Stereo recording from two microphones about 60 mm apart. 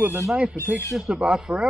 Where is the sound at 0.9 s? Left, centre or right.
Centre.